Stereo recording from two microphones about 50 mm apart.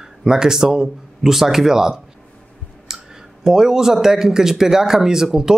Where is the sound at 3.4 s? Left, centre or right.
Centre.